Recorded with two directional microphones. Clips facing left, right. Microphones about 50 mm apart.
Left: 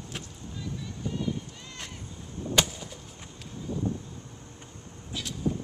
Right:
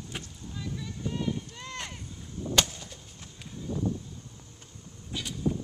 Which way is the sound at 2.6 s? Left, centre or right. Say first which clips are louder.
Left 1 dB; centre.